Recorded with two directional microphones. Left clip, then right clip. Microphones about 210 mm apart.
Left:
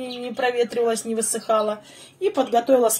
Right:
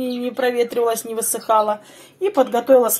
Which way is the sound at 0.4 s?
20° right (ahead or behind).